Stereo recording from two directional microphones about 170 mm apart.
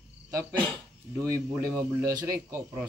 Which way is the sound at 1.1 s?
15° right (ahead or behind).